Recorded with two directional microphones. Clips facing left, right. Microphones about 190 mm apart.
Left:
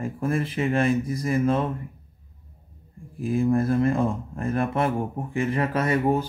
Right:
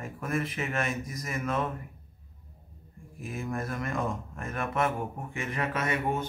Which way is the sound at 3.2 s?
30° left (ahead or behind).